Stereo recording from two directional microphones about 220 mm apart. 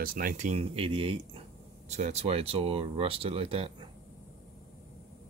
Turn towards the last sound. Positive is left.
turn(degrees=-25)  # may be behind; listen again after turning